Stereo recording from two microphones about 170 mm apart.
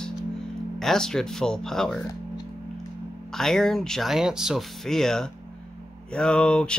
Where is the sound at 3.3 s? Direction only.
Centre (ahead or behind).